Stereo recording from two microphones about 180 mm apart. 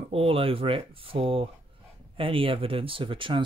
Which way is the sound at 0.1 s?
30° right (ahead or behind).